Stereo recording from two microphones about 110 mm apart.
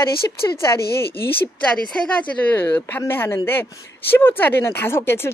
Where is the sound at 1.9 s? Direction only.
15° left (ahead or behind).